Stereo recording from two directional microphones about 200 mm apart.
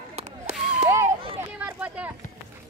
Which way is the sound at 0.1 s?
35° right (ahead or behind).